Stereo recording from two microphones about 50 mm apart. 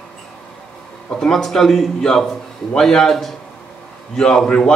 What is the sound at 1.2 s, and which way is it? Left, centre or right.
A man's voice, centre.